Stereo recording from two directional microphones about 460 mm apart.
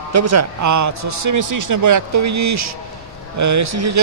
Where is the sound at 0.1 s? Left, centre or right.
Right.